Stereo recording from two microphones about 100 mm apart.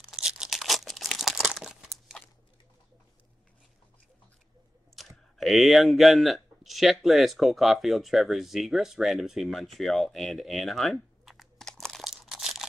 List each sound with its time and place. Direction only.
0.1 s tearing: 5° right (ahead or behind)
4.9 s speech: centre (ahead or behind)